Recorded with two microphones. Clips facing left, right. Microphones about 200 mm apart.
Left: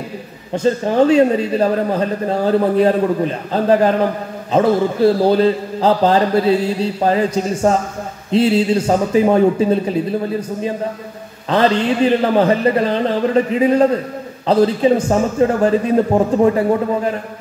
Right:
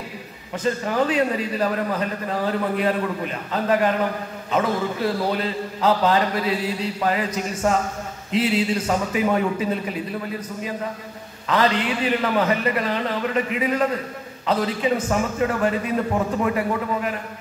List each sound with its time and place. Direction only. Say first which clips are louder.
0.5 s speech: left 7 dB; 30° left (ahead or behind)